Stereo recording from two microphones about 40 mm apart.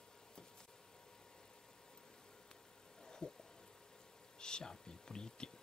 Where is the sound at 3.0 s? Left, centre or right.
Centre.